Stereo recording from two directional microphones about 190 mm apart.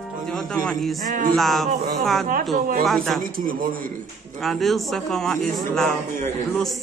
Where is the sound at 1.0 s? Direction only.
45° right (ahead or behind).